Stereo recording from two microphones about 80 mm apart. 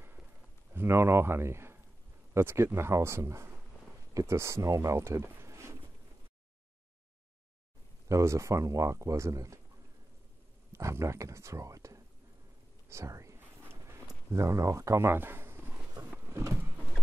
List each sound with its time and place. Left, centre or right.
0.7 s speech: right
8.1 s speech: right
10.7 s speech: right
12.8 s whispering: right
13.4 s a sound: right